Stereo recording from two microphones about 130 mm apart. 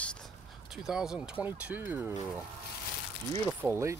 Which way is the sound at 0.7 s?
5° right (ahead or behind).